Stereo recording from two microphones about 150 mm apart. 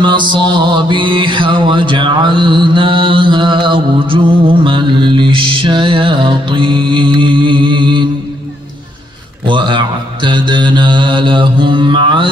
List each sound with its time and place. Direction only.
0.0 s mantra: 30° right (ahead or behind)
9.5 s mantra: 30° right (ahead or behind)